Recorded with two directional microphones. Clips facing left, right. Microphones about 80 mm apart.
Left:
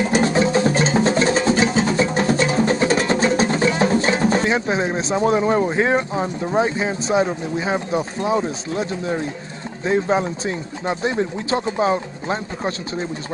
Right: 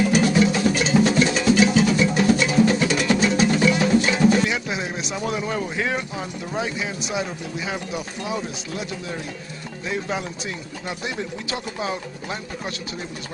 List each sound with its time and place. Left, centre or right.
0.0 s music: left
9.8 s speech: left